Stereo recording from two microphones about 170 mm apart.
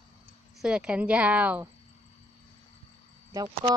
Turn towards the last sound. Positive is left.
turn(degrees=-20)  # may be behind; listen again after turning